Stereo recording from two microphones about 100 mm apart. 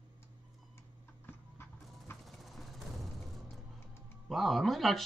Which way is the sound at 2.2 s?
Centre (ahead or behind).